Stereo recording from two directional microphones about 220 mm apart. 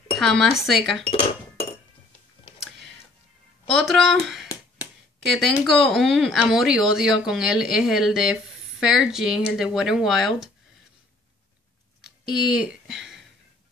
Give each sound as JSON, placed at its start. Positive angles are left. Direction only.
{"t": 0.2, "sound": "speech", "side_deg": 0}
{"t": 1.0, "sound": "chink", "side_deg": 25}
{"t": 3.7, "sound": "speech", "side_deg": 0}
{"t": 12.0, "sound": "a sound", "side_deg": 0}